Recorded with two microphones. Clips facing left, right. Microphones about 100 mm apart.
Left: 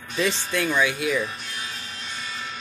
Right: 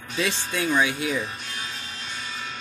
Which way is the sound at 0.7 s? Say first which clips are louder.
Right 1 dB; 20° right (ahead or behind).